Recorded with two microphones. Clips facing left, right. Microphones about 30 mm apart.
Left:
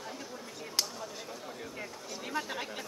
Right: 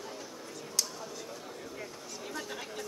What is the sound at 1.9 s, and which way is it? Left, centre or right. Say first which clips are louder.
Chatter: left 4 dB; centre.